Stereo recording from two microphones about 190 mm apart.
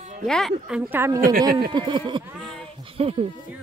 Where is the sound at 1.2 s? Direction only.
50° right (ahead or behind).